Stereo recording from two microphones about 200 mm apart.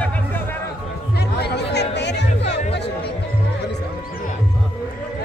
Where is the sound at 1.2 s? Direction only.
55° left (ahead or behind).